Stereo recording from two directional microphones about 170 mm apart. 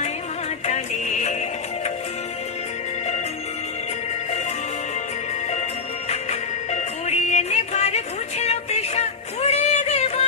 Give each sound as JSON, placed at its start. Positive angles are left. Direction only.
{"t": 0.7, "sound": "music", "side_deg": 45}
{"t": 6.7, "sound": "music", "side_deg": 40}